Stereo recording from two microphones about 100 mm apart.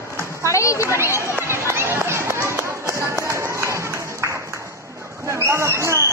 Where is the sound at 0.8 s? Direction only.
25° right (ahead or behind).